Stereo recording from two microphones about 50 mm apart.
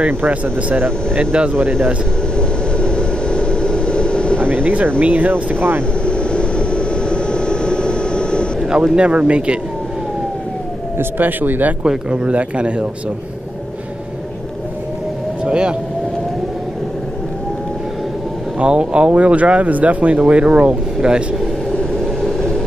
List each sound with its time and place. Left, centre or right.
0.3 s speech: right
1.5 s speech: right
2.3 s vehicle: centre
4.6 s speech: right
5.3 s speech: right
6.0 s vehicle: left
8.6 s speech: centre
11.0 s speech: right
11.8 s speech: right
15.4 s speech: centre
18.6 s speech: right